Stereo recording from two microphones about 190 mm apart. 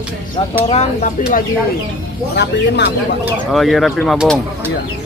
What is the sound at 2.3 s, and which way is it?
Speech, 60° left (ahead or behind).